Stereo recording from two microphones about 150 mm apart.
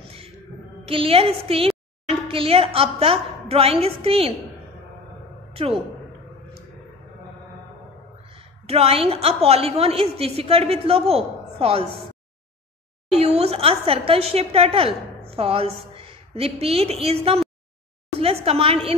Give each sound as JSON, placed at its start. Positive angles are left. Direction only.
{"t": 0.8, "sound": "a woman's voice", "side_deg": -40}
{"t": 5.5, "sound": "a woman's voice", "side_deg": -40}
{"t": 8.3, "sound": "a woman's voice", "side_deg": -40}
{"t": 13.2, "sound": "a woman's voice", "side_deg": -45}
{"t": 18.2, "sound": "a sound", "side_deg": -40}